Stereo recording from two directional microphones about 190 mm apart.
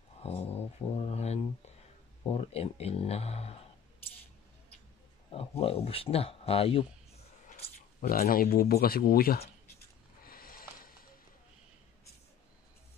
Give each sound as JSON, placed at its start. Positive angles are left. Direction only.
{"t": 0.2, "sound": "speech", "side_deg": 30}
{"t": 5.3, "sound": "speech", "side_deg": 30}
{"t": 8.0, "sound": "speech", "side_deg": 50}
{"t": 10.2, "sound": "a sound", "side_deg": 50}